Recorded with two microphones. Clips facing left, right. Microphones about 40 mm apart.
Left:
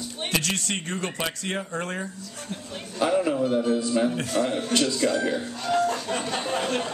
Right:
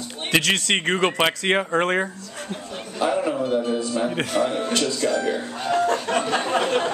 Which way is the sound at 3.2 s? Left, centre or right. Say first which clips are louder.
Even; right.